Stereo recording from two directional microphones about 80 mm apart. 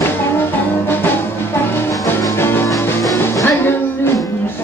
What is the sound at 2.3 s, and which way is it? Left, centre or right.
Music, left.